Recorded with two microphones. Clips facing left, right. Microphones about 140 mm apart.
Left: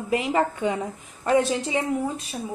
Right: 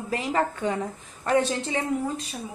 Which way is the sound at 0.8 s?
10° left (ahead or behind).